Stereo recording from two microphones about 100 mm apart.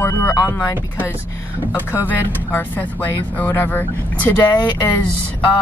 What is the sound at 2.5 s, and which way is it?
Speech, 20° left (ahead or behind).